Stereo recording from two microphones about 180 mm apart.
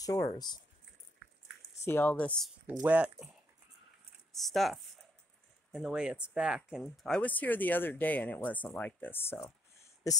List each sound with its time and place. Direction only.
0.0 s speech: 20° left (ahead or behind)
1.9 s speech: 10° left (ahead or behind)
2.6 s speech: 10° right (ahead or behind)
4.3 s speech: centre (ahead or behind)